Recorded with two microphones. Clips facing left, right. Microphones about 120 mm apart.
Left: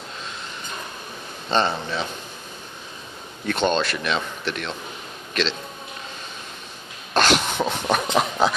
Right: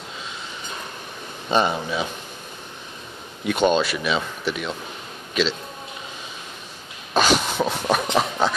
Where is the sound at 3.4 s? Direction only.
5° right (ahead or behind).